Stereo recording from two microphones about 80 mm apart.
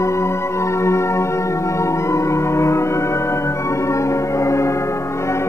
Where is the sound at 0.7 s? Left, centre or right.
Left.